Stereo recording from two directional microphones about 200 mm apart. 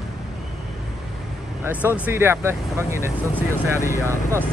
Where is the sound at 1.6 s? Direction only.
10° right (ahead or behind).